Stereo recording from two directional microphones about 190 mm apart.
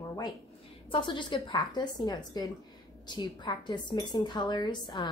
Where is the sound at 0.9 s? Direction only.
25° left (ahead or behind).